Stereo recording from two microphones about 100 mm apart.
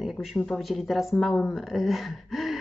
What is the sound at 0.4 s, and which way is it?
A woman's voice, centre (ahead or behind).